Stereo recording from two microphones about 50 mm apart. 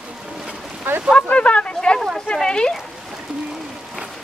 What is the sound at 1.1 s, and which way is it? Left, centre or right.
Speech, left.